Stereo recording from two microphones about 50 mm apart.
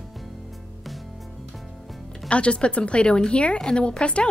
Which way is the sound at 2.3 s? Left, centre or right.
Left.